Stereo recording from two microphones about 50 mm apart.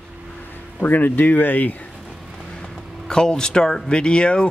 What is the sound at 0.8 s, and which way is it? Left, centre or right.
Speech, left.